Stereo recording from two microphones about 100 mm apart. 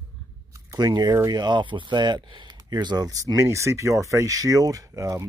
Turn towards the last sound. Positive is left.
turn(degrees=-35)  # may be behind; listen again after turning